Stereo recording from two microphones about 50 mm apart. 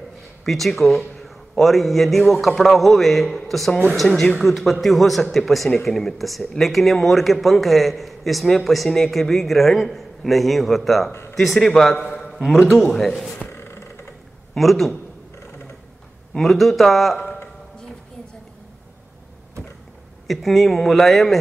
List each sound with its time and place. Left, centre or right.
0.5 s a man's voice: centre
11.1 s a sound: left
11.3 s a man's voice: centre
13.5 s a sound: left
14.5 s a man's voice: centre
16.3 s a man's voice: centre
20.2 s a man's voice: centre